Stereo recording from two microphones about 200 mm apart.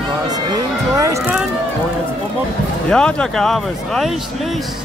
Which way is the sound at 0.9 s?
15° right (ahead or behind).